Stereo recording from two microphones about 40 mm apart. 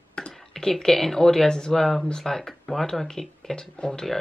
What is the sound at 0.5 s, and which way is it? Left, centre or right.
Speech, centre.